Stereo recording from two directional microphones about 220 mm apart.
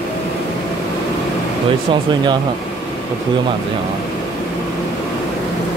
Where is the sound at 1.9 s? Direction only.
20° right (ahead or behind).